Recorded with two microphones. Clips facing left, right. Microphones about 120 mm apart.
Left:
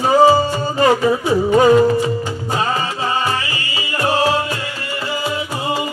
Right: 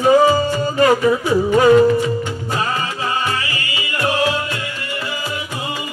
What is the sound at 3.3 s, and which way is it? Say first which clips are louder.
Music: left 1 dB; 30° left (ahead or behind).